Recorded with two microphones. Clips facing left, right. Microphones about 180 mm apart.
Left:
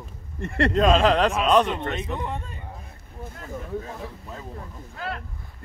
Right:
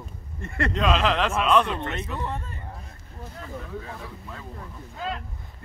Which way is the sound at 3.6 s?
20° left (ahead or behind).